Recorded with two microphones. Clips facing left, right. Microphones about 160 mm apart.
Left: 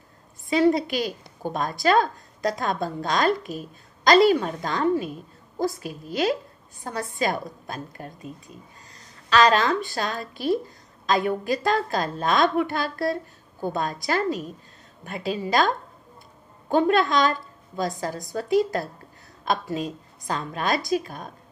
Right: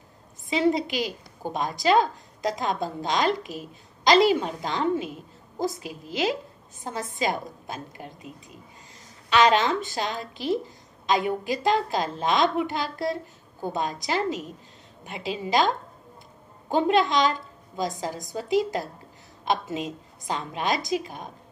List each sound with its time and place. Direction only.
0.5 s a woman's voice: 20° right (ahead or behind)
16.7 s a woman's voice: 20° right (ahead or behind)